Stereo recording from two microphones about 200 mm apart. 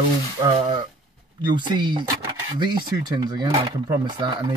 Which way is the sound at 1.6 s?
20° right (ahead or behind).